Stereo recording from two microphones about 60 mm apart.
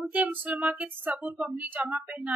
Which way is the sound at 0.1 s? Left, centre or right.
Right.